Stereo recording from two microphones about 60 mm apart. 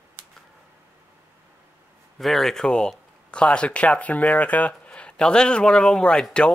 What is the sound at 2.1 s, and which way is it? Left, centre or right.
Speech, centre.